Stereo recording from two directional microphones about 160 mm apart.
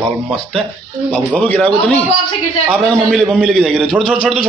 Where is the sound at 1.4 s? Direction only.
10° left (ahead or behind).